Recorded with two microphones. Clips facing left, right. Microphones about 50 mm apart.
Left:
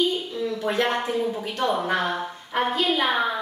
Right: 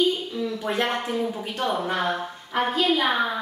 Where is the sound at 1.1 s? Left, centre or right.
Centre.